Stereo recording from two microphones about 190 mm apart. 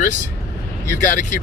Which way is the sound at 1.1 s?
40° left (ahead or behind).